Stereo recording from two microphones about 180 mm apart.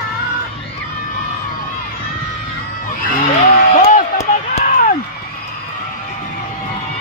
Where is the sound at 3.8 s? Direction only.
45° left (ahead or behind).